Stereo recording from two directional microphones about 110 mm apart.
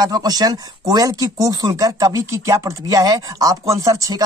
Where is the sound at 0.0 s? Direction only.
35° right (ahead or behind).